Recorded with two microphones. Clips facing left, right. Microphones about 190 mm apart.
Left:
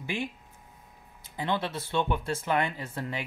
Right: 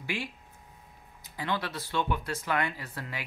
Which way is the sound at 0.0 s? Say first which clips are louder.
Left 2 dB; 20° left (ahead or behind).